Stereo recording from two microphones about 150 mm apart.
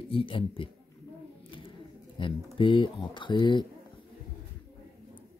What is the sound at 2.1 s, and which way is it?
Speech, 35° left (ahead or behind).